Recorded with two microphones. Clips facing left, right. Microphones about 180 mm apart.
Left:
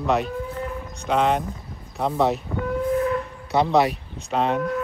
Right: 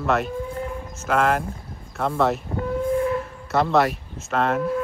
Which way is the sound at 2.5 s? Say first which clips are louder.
Even; 25° right (ahead or behind).